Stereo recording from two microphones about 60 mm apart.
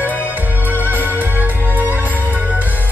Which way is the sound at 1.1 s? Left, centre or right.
Right.